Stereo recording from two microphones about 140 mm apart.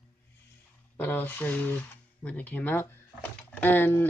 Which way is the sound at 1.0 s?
15° left (ahead or behind).